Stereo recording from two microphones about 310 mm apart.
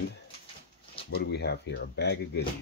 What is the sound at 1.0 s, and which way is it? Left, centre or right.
Speech, left.